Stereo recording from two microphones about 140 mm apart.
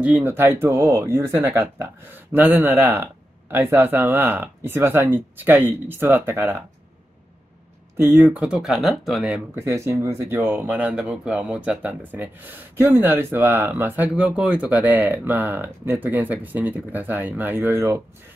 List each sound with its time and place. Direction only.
0.0 s speech: 15° right (ahead or behind)
8.0 s speech: 15° right (ahead or behind)
9.6 s speech: 20° right (ahead or behind)